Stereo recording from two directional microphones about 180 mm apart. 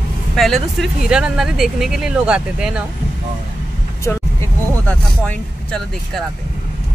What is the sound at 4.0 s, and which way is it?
Speech, 15° left (ahead or behind).